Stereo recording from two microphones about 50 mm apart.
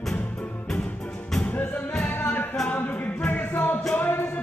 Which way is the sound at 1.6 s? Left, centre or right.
Left.